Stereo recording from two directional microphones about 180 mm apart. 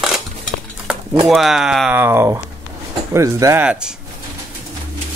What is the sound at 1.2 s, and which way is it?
Speech, centre (ahead or behind).